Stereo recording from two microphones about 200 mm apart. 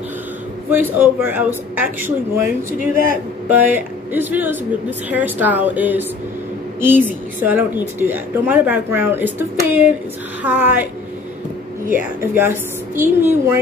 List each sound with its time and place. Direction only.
0.7 s a woman's voice: 10° right (ahead or behind)
11.9 s a woman's voice: 10° right (ahead or behind)